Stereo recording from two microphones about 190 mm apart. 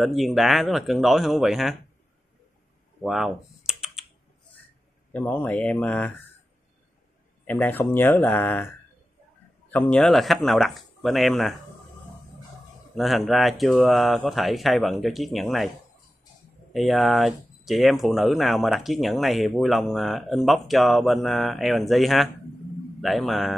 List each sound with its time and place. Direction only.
0.0 s speech: centre (ahead or behind)
3.0 s typing: centre (ahead or behind)
5.1 s speech: 10° left (ahead or behind)
7.4 s speech: 10° left (ahead or behind)
9.7 s speech: 10° left (ahead or behind)
12.9 s speech: centre (ahead or behind)
16.7 s speech: centre (ahead or behind)